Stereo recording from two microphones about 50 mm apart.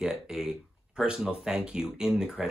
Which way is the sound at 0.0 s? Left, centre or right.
Centre.